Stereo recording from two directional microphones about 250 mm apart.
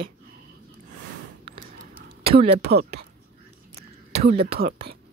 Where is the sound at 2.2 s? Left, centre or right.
Right.